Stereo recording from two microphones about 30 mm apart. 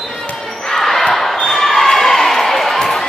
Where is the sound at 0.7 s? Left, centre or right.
Centre.